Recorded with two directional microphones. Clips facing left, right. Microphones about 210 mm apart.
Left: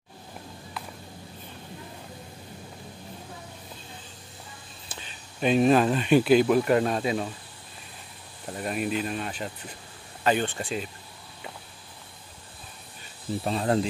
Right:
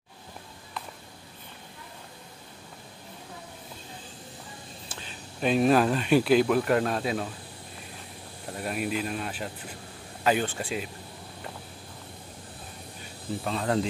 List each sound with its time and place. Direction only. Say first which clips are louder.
5.4 s speech: left 2 dB; centre (ahead or behind)
8.5 s speech: left 2 dB; centre (ahead or behind)
13.5 s speech: left 3 dB; 30° left (ahead or behind)